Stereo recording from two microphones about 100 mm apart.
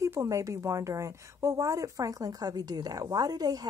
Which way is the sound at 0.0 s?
30° right (ahead or behind).